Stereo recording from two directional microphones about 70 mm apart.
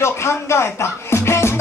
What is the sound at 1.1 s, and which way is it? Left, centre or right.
Music, left.